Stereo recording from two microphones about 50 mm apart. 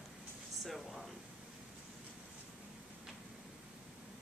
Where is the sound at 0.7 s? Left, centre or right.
Centre.